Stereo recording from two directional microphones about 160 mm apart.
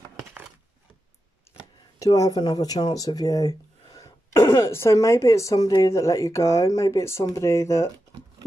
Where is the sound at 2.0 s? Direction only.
20° left (ahead or behind).